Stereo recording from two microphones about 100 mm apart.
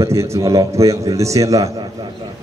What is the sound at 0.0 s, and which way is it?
A man's voice, 30° right (ahead or behind).